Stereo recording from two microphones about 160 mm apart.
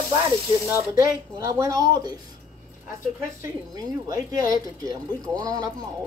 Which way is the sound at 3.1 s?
20° right (ahead or behind).